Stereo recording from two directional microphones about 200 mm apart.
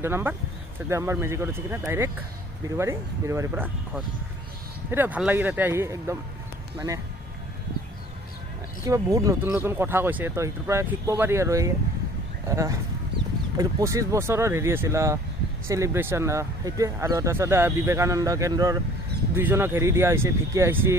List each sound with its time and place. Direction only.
0.0 s speech: 10° right (ahead or behind)
8.8 s speech: 15° right (ahead or behind)